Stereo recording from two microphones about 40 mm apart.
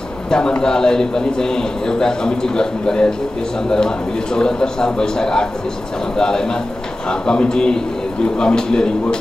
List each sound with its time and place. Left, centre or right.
0.3 s a man's voice: left